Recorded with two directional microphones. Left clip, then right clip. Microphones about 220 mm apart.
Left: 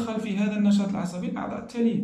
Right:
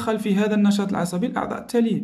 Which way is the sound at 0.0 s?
45° right (ahead or behind).